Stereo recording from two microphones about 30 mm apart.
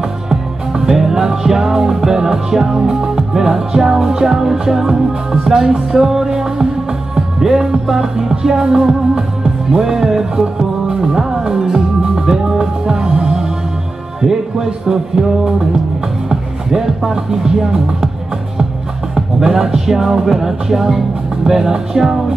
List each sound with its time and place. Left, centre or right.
0.3 s music: centre
11.3 s music: right
19.1 s music: centre